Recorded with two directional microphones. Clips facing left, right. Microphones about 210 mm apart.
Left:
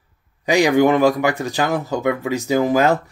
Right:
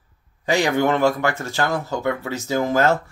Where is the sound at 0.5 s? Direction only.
15° left (ahead or behind).